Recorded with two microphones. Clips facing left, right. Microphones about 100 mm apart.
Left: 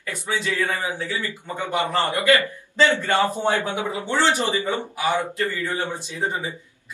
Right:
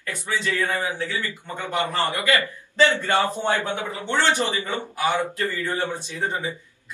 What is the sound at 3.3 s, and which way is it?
Speech, 20° left (ahead or behind).